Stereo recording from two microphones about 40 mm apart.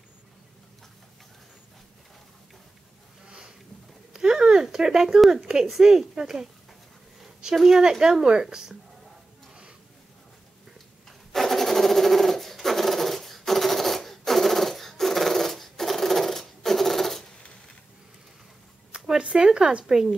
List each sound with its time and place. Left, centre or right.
3.3 s a sound: centre
5.5 s a woman's voice: centre
7.5 s a woman's voice: centre
11.1 s sewing machine: centre
18.9 s a sound: right
19.8 s a woman's voice: centre